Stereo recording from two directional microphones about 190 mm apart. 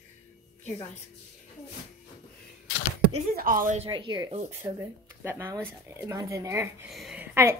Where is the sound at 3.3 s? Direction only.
50° right (ahead or behind).